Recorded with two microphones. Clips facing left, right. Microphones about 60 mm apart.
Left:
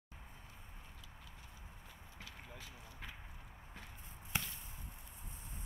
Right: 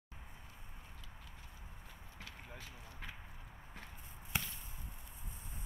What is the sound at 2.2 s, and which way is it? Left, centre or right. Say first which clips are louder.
Clip-clop: right 1 dB; right.